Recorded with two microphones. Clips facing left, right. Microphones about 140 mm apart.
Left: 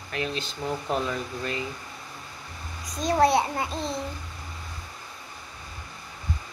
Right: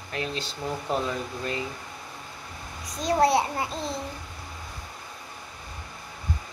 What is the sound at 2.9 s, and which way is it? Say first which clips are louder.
A child's voice: left 1 dB; 20° left (ahead or behind).